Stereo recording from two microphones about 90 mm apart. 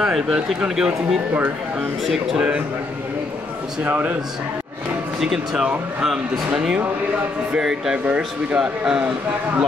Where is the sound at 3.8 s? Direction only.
20° right (ahead or behind).